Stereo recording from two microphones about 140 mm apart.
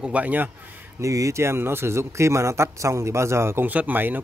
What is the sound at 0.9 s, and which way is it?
A man's voice, 20° right (ahead or behind).